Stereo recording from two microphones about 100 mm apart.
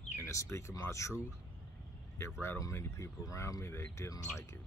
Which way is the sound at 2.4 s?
25° left (ahead or behind).